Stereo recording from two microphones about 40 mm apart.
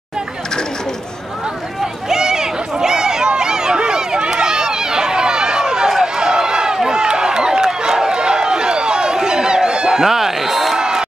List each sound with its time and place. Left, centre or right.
2.0 s run: centre
10.8 s crowd: centre